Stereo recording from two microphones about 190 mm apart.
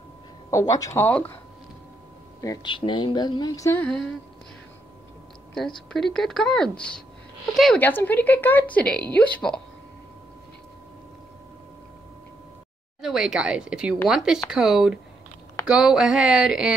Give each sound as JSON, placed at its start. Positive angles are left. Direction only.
{"t": 0.5, "sound": "speech", "side_deg": 15}
{"t": 2.4, "sound": "speech", "side_deg": 20}
{"t": 5.9, "sound": "speech", "side_deg": 0}
{"t": 13.0, "sound": "speech", "side_deg": -5}